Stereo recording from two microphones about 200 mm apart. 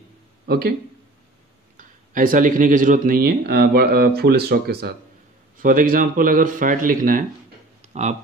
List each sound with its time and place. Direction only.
0.5 s speech: 50° right (ahead or behind)
1.8 s speech: 45° right (ahead or behind)
7.8 s a sound: 35° right (ahead or behind)